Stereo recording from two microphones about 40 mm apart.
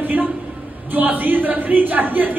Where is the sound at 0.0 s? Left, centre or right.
Right.